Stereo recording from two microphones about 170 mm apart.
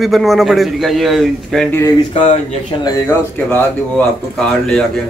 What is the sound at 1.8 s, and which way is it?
Speech, 30° left (ahead or behind).